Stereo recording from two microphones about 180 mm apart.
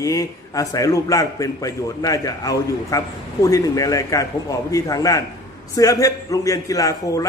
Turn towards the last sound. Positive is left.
turn(degrees=20)  # may be behind; listen again after turning